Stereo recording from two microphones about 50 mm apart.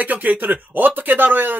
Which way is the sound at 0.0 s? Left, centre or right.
Right.